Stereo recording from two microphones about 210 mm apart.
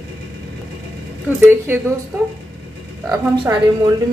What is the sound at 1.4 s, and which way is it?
Speech, 10° right (ahead or behind).